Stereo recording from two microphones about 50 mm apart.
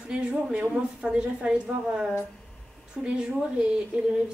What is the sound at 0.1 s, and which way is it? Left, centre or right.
Speech, right.